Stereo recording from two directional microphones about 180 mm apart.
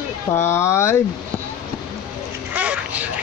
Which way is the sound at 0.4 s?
15° left (ahead or behind).